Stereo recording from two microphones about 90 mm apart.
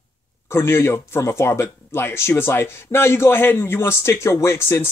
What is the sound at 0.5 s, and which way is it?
Speech, 30° left (ahead or behind).